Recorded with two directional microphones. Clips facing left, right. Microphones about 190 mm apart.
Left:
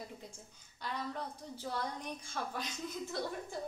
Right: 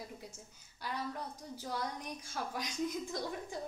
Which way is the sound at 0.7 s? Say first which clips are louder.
Even; 10° right (ahead or behind).